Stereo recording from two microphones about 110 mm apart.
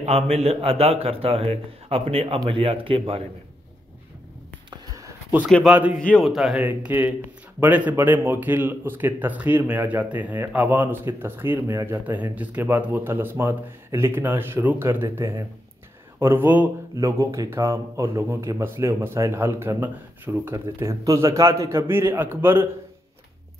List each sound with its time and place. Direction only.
0.0 s a man's voice: 70° right (ahead or behind); by 3.3 s 55° right (ahead or behind)
5.7 s speech: 15° right (ahead or behind)
5.9 s a man's voice: 10° left (ahead or behind)
6.2 s speech: 5° right (ahead or behind)
6.6 s speech: 15° right (ahead or behind)
16.9 s speech: 30° right (ahead or behind)